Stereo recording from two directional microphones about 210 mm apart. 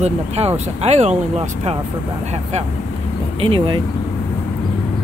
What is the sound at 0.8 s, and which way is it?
Speech, 30° right (ahead or behind).